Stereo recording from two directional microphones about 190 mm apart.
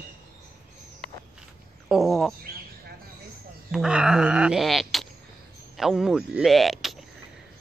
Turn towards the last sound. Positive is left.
turn(degrees=0)  # may be behind; listen again after turning